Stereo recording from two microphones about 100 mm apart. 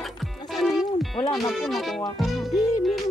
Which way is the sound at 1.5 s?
Centre (ahead or behind).